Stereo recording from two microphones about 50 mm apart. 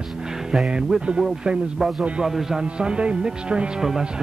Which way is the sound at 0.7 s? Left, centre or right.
Centre.